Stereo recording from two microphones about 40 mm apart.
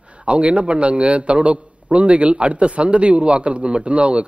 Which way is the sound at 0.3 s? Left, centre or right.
Right.